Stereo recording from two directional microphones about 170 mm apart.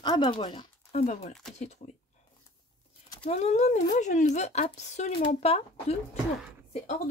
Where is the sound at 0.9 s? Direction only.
45° left (ahead or behind).